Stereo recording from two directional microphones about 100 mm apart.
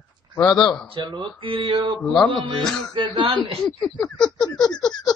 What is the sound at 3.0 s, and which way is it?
Speech, 60° right (ahead or behind).